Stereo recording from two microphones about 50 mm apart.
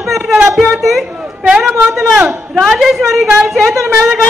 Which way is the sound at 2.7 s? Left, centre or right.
Centre.